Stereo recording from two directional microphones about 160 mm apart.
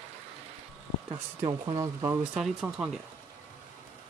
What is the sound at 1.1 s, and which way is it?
Speech, 35° right (ahead or behind).